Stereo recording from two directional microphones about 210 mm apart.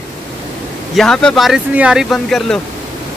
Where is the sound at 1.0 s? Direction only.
5° left (ahead or behind).